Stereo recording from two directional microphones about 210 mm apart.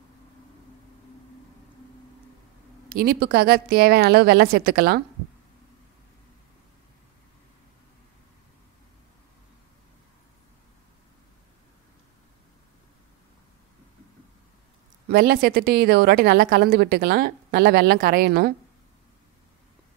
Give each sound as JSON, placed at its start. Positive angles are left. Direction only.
{"t": 2.9, "sound": "a woman's voice", "side_deg": -45}
{"t": 15.0, "sound": "a woman's voice", "side_deg": -45}